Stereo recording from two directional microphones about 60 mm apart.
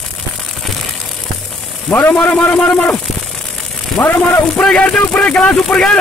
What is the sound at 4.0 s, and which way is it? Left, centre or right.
Speech, left.